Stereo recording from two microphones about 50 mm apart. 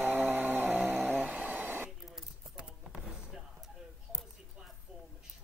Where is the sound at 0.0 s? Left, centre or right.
Right.